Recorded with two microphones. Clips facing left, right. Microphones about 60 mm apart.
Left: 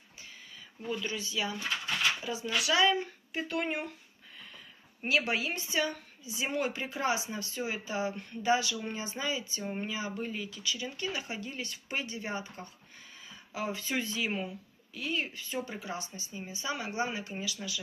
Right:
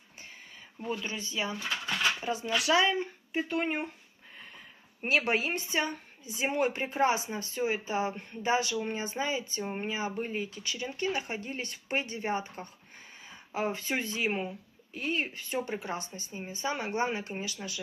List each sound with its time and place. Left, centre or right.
0.8 s speech: right
2.7 s speech: right
5.0 s speech: right